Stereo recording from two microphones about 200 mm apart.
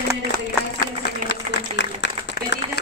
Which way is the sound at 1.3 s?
65° left (ahead or behind).